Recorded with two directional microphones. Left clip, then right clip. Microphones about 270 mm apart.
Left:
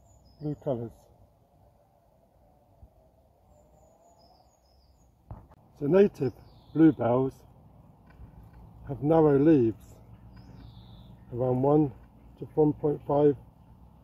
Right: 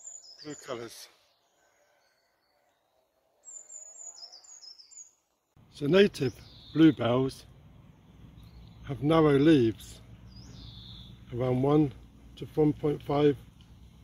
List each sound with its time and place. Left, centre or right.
5.9 s speech: right
8.8 s speech: right
11.3 s speech: right